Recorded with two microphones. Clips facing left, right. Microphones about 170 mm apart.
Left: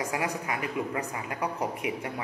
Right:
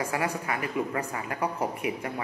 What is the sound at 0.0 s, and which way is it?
Speech, 15° left (ahead or behind).